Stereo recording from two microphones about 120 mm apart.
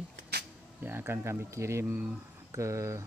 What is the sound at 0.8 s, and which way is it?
Speech, 20° right (ahead or behind).